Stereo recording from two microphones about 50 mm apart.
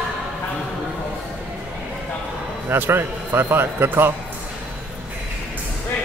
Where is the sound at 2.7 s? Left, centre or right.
Right.